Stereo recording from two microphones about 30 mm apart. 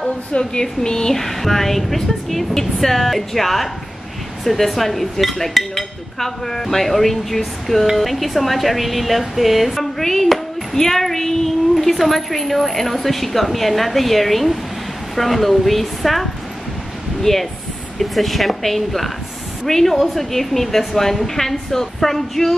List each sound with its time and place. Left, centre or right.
0.4 s a sound: left
1.1 s a woman's voice: centre
9.9 s speech: centre
11.7 s a woman's voice: centre